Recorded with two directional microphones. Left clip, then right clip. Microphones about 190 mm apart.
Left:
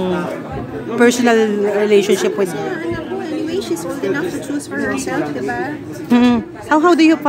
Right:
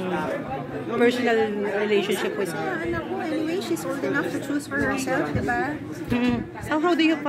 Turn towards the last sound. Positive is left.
turn(degrees=20)  # may be behind; listen again after turning